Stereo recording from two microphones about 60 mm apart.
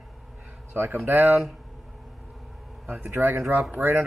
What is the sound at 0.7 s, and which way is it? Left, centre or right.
Speech, right.